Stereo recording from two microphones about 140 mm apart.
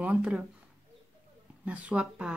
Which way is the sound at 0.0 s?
10° right (ahead or behind).